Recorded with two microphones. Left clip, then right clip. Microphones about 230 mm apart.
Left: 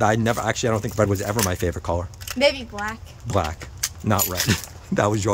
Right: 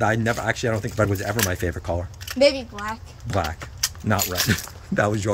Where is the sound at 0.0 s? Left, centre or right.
Centre.